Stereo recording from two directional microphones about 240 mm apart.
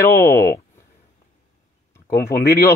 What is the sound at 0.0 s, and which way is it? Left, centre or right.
Speech, centre.